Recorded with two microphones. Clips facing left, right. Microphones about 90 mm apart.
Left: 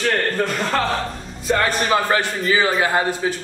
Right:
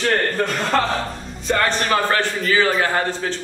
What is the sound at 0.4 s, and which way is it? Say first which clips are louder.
A man's voice: right 1 dB; centre (ahead or behind).